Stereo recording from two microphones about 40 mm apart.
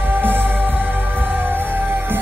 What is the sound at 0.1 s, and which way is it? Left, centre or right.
Music, right.